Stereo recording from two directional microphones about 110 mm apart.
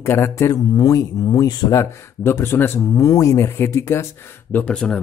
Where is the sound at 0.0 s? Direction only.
25° left (ahead or behind).